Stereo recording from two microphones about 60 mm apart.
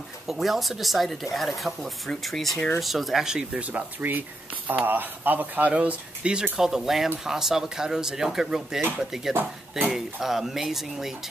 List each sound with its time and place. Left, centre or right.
0.3 s speech: centre
3.6 s speech: right
6.6 s speech: centre